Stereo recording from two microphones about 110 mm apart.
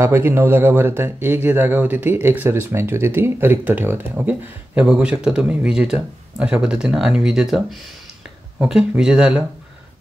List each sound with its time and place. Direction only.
0.0 s speech: 25° right (ahead or behind); by 9.4 s 10° right (ahead or behind)